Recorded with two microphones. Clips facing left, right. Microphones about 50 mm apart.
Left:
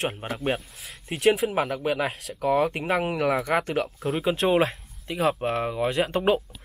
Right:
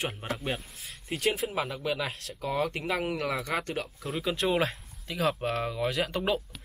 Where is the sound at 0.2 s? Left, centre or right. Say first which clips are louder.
Left 2 dB; left.